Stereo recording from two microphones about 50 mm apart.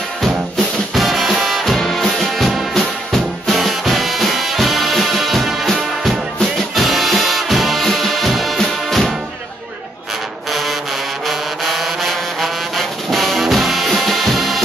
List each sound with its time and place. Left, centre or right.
0.9 s music: centre
10.5 s brass instrument: centre